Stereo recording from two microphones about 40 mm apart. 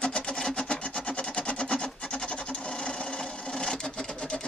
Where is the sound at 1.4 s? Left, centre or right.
Left.